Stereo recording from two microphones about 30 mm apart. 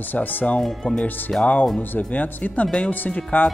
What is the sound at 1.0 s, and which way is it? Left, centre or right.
Speech, left.